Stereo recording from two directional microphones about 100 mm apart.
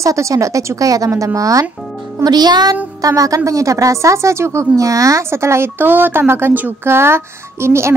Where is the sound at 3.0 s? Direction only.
35° right (ahead or behind).